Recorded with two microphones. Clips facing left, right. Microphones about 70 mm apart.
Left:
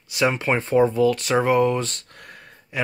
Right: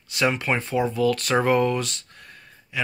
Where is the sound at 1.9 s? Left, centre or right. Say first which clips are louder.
Left 3 dB; left.